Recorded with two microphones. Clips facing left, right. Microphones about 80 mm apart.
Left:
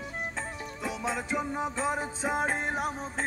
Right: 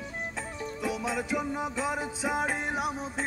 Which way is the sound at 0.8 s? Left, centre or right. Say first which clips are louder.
Right 1 dB; left.